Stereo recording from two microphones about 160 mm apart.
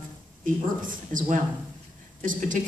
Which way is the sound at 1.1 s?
55° right (ahead or behind).